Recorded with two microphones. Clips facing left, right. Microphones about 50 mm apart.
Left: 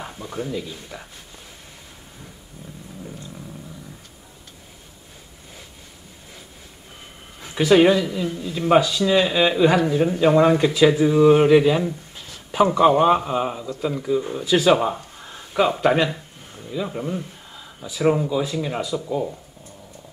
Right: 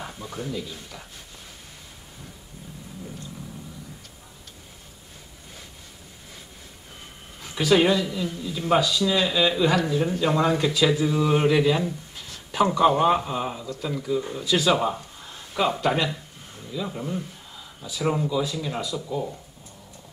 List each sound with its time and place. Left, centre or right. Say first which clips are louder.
0.0 s speech: left 4 dB; left
7.4 s speech: left 5 dB; left